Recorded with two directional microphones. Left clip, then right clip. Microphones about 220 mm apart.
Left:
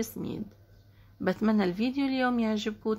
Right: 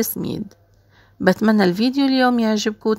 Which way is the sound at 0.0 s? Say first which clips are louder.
Right 11 dB; 40° right (ahead or behind).